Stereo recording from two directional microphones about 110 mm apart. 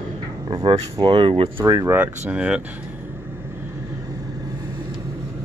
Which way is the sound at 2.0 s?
10° right (ahead or behind).